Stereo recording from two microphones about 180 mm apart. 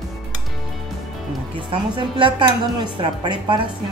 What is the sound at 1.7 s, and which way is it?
Speech, 30° right (ahead or behind).